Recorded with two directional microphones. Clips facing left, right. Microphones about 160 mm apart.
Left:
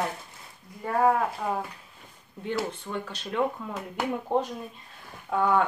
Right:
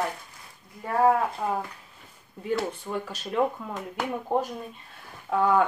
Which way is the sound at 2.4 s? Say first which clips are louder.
Right 2 dB; 5° right (ahead or behind).